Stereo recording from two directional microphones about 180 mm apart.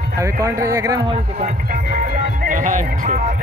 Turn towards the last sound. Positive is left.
turn(degrees=-45)  # may be behind; listen again after turning